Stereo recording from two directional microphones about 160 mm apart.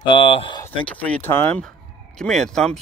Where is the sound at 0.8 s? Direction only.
10° left (ahead or behind).